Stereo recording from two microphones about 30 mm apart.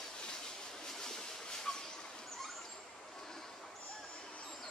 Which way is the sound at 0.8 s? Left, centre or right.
Centre.